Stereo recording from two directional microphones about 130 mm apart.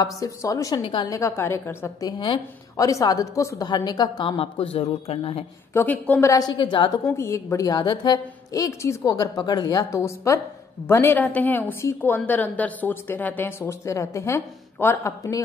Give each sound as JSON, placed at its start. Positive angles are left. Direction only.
{"t": 0.0, "sound": "a woman's voice", "side_deg": 25}
{"t": 0.8, "sound": "a woman's voice", "side_deg": 40}
{"t": 1.1, "sound": "a woman's voice", "side_deg": 20}
{"t": 2.0, "sound": "a woman's voice", "side_deg": 35}
{"t": 2.8, "sound": "a woman's voice", "side_deg": 25}
{"t": 5.7, "sound": "speech", "side_deg": 15}
{"t": 6.2, "sound": "a woman's voice", "side_deg": 30}
{"t": 7.2, "sound": "a woman's voice", "side_deg": 20}